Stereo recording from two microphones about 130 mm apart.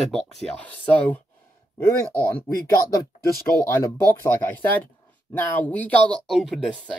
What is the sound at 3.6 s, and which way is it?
Speech, 20° left (ahead or behind).